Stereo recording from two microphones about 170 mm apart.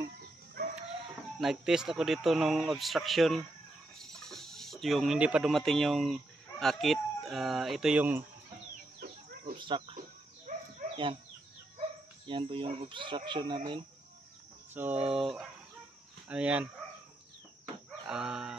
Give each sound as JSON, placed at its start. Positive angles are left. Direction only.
{"t": 1.4, "sound": "speech", "side_deg": -5}
{"t": 9.6, "sound": "cricket", "side_deg": -30}
{"t": 9.9, "sound": "dog", "side_deg": -50}
{"t": 12.3, "sound": "speech", "side_deg": -30}
{"t": 14.7, "sound": "cricket", "side_deg": -10}
{"t": 15.0, "sound": "speech", "side_deg": 0}
{"t": 18.0, "sound": "speech", "side_deg": -5}